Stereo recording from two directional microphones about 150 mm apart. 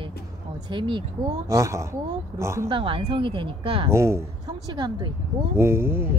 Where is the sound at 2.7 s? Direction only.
35° right (ahead or behind).